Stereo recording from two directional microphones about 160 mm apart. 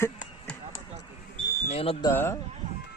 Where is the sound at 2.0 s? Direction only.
15° left (ahead or behind).